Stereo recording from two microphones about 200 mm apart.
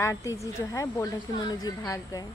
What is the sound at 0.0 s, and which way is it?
A woman's voice, 15° left (ahead or behind).